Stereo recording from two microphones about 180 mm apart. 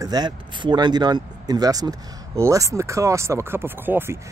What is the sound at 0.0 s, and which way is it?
Speech, 20° right (ahead or behind).